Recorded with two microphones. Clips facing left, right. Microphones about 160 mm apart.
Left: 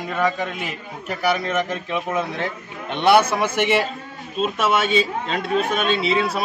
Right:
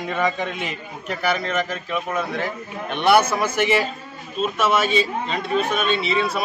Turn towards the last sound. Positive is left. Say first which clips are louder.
# left 1 dB
turn(degrees=0)  # may be behind; listen again after turning